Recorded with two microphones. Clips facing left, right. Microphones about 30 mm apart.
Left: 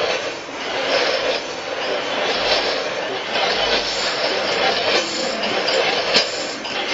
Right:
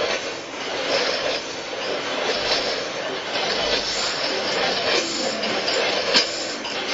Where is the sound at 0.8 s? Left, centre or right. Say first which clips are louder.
Left 4 dB; centre.